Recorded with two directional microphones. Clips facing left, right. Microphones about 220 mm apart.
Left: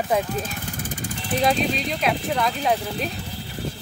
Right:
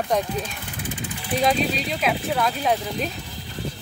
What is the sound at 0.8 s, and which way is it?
Vehicle, 45° left (ahead or behind).